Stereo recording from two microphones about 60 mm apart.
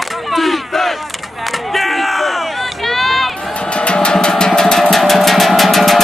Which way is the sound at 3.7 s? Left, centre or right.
Centre.